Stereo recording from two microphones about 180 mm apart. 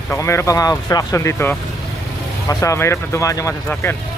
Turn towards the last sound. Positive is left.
turn(degrees=15)  # may be behind; listen again after turning